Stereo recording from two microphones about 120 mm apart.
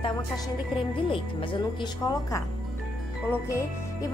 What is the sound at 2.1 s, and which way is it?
Speech, 25° left (ahead or behind).